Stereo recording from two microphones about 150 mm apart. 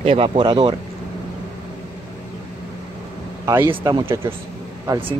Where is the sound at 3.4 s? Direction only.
15° right (ahead or behind).